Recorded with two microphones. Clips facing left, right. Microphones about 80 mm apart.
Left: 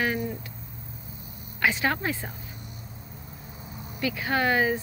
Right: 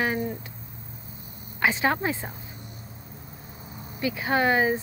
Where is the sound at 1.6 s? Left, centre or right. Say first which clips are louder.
Right 2 dB; right.